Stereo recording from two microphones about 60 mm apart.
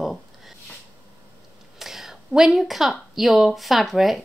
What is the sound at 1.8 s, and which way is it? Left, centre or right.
Speech, centre.